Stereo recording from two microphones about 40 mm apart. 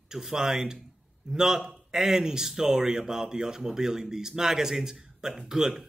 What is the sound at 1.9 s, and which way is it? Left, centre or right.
Speech, centre.